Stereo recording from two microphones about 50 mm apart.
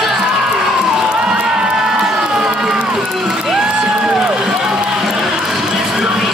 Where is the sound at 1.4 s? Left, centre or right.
Centre.